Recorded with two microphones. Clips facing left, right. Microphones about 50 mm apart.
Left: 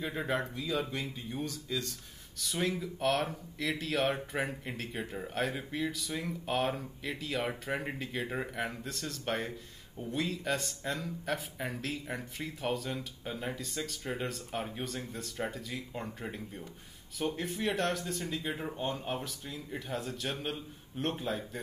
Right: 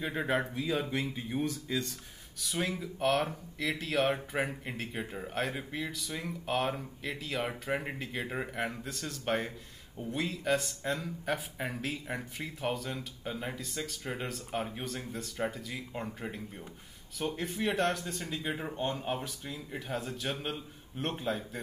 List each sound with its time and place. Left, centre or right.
0.0 s speech: centre
0.7 s speech: right
2.4 s a man's voice: centre